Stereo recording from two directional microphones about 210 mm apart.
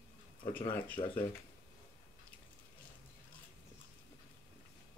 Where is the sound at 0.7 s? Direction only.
10° left (ahead or behind).